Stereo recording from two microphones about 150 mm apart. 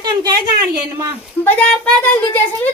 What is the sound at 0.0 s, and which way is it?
Speech, 30° right (ahead or behind).